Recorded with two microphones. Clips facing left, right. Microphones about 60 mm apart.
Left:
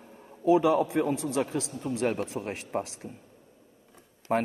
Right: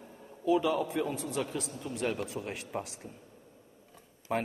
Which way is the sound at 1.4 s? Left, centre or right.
Left.